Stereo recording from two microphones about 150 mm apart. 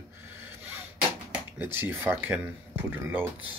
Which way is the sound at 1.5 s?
15° right (ahead or behind).